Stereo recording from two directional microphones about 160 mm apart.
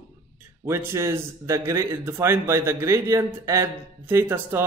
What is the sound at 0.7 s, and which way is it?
Speech, 15° right (ahead or behind).